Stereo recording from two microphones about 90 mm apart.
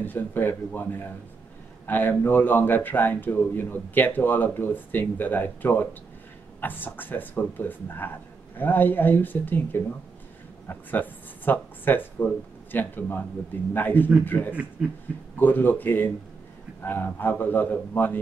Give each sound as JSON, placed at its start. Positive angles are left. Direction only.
{"t": 0.0, "sound": "a man's voice", "side_deg": 20}
{"t": 14.5, "sound": "a man's voice", "side_deg": -15}
{"t": 15.3, "sound": "a man's voice", "side_deg": 20}